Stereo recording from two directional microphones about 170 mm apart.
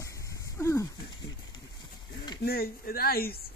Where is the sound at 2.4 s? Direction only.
65° left (ahead or behind).